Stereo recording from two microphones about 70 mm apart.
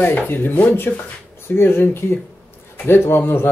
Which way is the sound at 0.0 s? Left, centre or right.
Left.